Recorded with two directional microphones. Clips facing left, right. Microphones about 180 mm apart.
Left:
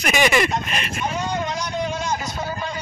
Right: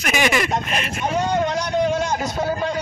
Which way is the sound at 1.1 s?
60° right (ahead or behind).